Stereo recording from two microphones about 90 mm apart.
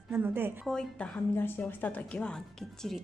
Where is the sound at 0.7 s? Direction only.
10° left (ahead or behind).